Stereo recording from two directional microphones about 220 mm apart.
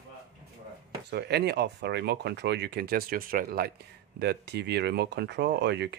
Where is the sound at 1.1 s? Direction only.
50° right (ahead or behind).